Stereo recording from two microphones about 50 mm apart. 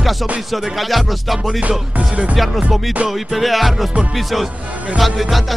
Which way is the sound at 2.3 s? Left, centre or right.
Centre.